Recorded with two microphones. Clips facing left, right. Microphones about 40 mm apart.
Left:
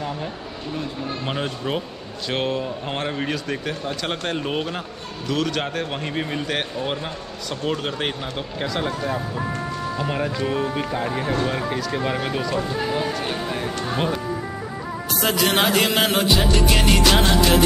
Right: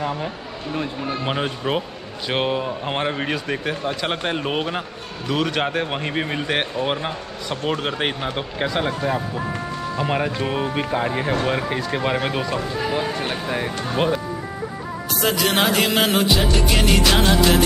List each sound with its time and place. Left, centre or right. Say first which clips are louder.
1.0 s speech: right 3 dB; centre
15.1 s music: even; centre